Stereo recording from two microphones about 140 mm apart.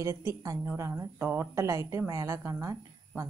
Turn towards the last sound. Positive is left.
turn(degrees=-20)  # may be behind; listen again after turning